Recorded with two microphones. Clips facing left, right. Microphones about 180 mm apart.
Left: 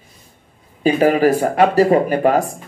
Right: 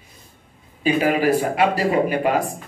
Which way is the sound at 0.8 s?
45° left (ahead or behind).